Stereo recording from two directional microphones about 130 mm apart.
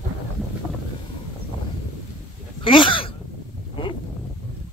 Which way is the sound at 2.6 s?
40° left (ahead or behind).